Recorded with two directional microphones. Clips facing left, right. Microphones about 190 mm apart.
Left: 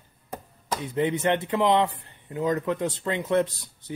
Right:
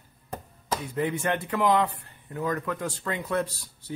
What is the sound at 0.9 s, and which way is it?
A man's voice, 20° left (ahead or behind).